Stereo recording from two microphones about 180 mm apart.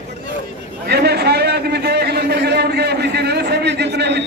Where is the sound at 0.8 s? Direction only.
65° right (ahead or behind).